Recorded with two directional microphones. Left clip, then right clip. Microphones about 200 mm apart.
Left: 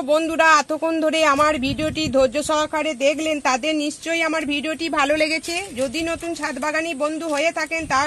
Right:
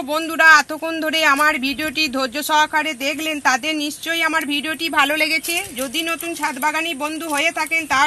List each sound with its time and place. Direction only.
0.1 s speech: 50° left (ahead or behind)